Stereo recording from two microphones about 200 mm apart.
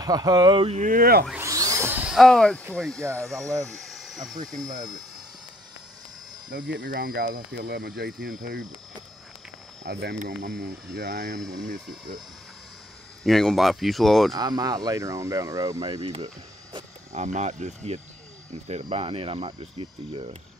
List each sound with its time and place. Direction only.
0.0 s speech: 20° right (ahead or behind)
0.7 s speech: 45° right (ahead or behind)
1.3 s a sound: 15° right (ahead or behind); by 2.6 s 5° left (ahead or behind)
2.7 s speech: 5° left (ahead or behind)
3.0 s speech: 15° right (ahead or behind)
3.6 s a sound: centre (ahead or behind)
4.7 s speech: 20° right (ahead or behind)
6.5 s speech: 45° right (ahead or behind)
9.8 s speech: 55° right (ahead or behind)
10.1 s speech: 40° right (ahead or behind)
13.2 s speech: centre (ahead or behind)
14.3 s speech: 20° right (ahead or behind)